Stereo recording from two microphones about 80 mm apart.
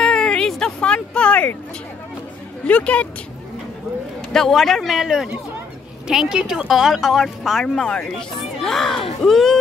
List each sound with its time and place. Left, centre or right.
0.0 s a sound: centre
2.6 s speech: centre
4.3 s speech: centre
7.6 s speech: centre